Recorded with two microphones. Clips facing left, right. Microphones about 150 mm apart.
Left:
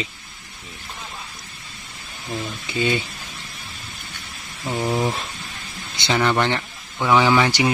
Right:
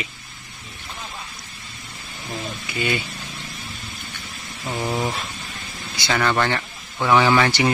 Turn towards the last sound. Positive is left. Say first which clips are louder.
# even
turn(degrees=15)  # may be behind; listen again after turning